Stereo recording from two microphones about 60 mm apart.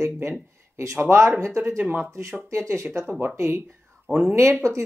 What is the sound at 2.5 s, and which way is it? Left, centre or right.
A woman's voice, right.